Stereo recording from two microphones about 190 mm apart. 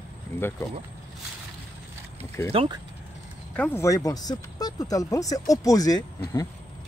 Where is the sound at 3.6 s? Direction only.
10° left (ahead or behind).